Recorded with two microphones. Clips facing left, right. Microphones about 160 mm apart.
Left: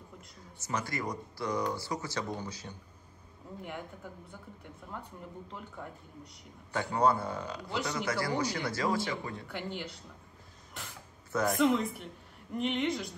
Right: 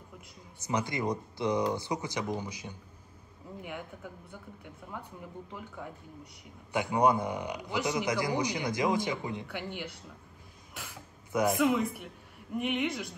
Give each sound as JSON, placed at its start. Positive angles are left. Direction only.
{"t": 0.6, "sound": "speech", "side_deg": -15}
{"t": 6.7, "sound": "speech", "side_deg": -15}
{"t": 11.3, "sound": "speech", "side_deg": -15}